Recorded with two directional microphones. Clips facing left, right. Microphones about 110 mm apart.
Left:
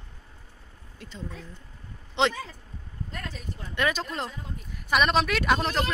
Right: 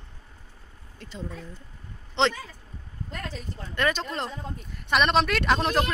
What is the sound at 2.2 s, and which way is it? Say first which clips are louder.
Speech: right 1 dB; 10° left (ahead or behind).